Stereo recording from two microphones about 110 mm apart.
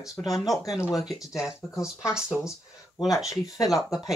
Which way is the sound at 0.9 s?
30° left (ahead or behind).